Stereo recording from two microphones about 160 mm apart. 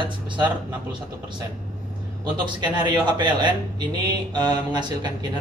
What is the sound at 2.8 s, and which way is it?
A man's voice, 30° right (ahead or behind).